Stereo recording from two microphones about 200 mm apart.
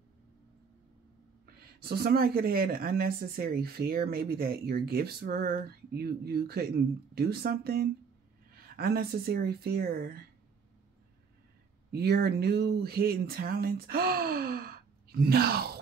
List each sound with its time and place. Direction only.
1.4 s speech: 50° right (ahead or behind)
11.9 s speech: 50° right (ahead or behind)